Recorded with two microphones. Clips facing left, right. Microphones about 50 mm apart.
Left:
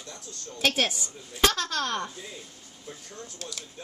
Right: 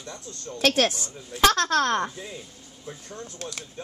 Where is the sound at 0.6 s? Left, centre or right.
Right.